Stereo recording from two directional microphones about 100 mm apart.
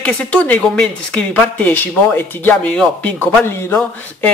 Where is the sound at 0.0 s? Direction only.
15° left (ahead or behind).